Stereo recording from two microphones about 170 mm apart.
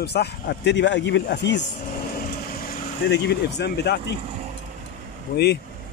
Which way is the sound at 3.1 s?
85° left.